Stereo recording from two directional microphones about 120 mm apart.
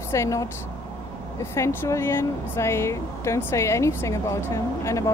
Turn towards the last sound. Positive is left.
turn(degrees=25)  # may be behind; listen again after turning